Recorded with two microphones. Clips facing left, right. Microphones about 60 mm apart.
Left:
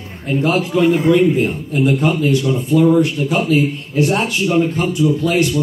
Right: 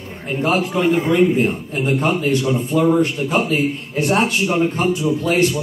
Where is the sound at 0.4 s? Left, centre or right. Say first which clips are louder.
Left 3 dB; right.